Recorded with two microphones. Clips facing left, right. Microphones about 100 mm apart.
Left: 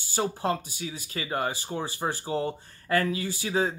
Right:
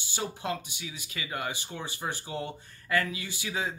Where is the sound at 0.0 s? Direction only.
40° left (ahead or behind).